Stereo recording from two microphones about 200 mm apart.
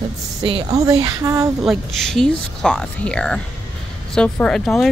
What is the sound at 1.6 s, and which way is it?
Speech, centre (ahead or behind).